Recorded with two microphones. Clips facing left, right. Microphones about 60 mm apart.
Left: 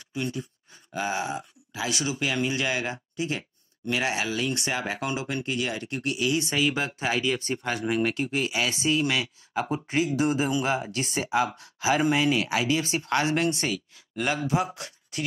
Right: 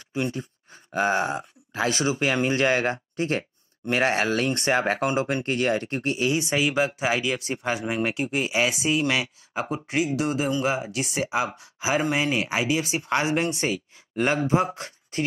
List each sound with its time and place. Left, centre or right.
0.1 s speech: right
6.6 s speech: centre
7.5 s speech: centre
9.7 s speech: centre; by 12.6 s right
12.6 s speech: centre
13.7 s speech: right